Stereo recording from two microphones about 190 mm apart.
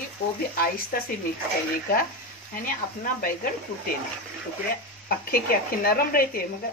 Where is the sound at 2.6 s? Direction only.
45° left (ahead or behind).